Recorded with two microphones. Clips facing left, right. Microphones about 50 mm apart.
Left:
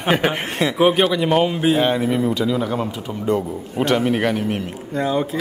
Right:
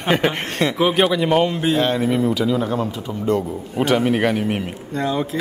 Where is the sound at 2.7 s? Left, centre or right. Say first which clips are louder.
Right 1 dB; centre.